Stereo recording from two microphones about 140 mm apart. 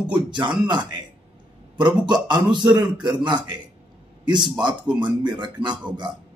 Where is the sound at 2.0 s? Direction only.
30° right (ahead or behind).